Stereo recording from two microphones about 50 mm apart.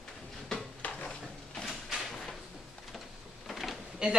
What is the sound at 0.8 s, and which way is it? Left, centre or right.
Dishes, left.